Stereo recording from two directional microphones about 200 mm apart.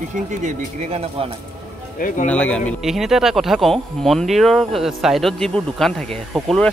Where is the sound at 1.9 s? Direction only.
40° left (ahead or behind).